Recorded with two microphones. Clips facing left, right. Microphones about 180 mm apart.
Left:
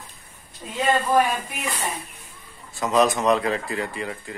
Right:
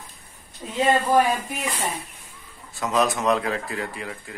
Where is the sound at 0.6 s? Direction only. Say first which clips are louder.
Right 2 dB; 10° right (ahead or behind).